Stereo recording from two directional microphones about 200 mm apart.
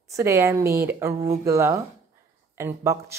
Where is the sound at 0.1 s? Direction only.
15° right (ahead or behind).